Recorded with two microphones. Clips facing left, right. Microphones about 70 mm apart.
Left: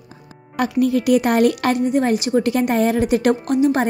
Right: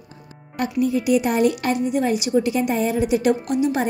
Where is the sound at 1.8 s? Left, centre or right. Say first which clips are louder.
Left 3 dB; left.